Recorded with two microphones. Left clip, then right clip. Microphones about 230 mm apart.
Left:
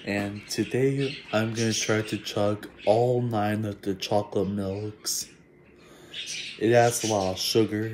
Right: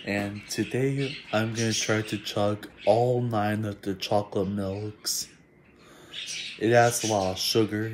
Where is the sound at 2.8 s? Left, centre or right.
Centre.